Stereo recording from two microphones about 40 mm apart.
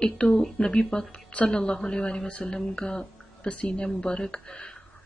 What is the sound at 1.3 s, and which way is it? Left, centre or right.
Speech, left.